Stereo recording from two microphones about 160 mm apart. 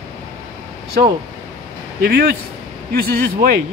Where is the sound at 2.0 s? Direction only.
70° right (ahead or behind).